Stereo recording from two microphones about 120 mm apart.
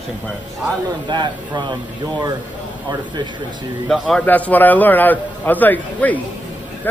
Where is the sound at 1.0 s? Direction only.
40° right (ahead or behind).